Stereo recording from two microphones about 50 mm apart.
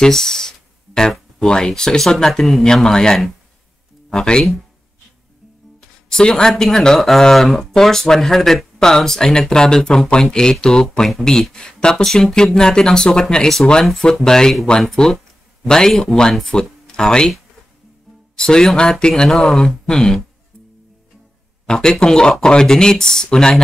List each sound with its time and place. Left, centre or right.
0.0 s a sound: centre
1.4 s speech: centre
6.0 s speech: centre
18.3 s speech: centre
21.6 s speech: centre